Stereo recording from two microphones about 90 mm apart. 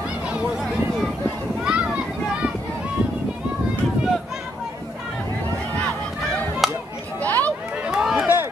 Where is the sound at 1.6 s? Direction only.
10° right (ahead or behind).